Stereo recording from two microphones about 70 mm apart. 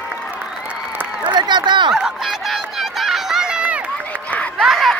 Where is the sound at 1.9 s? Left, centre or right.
Centre.